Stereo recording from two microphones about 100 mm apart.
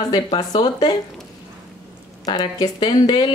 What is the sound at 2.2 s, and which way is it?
Speech, 45° left (ahead or behind).